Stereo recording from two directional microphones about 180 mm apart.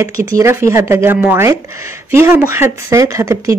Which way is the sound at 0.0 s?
15° right (ahead or behind).